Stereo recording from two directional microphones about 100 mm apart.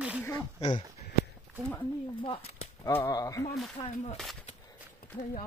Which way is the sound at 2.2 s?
70° left (ahead or behind).